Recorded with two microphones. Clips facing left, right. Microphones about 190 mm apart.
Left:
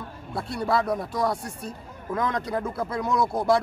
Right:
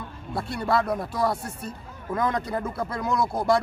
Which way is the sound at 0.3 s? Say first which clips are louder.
Even; centre (ahead or behind).